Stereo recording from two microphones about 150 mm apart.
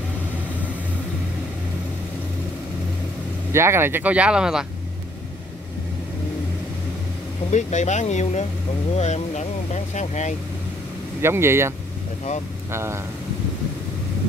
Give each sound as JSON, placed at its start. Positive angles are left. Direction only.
{"t": 3.5, "sound": "speech", "side_deg": -15}
{"t": 7.5, "sound": "speech", "side_deg": 50}
{"t": 11.1, "sound": "speech", "side_deg": -15}
{"t": 12.7, "sound": "speech", "side_deg": -15}